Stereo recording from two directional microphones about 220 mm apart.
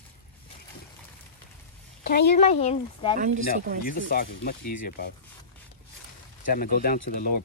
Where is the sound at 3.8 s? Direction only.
40° left (ahead or behind).